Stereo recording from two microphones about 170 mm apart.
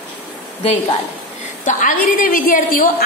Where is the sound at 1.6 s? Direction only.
50° left (ahead or behind).